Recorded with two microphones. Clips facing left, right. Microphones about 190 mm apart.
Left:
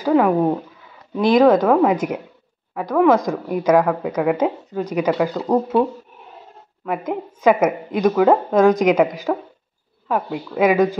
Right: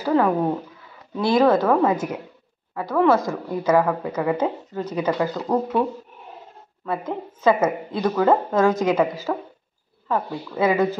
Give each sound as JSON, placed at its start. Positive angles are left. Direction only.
{"t": 0.0, "sound": "a woman's voice", "side_deg": 10}
{"t": 6.9, "sound": "a woman's voice", "side_deg": 15}